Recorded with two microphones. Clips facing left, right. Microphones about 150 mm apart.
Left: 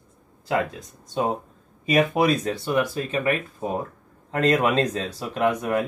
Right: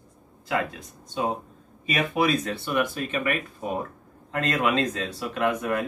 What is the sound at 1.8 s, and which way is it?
Speech, 40° left (ahead or behind).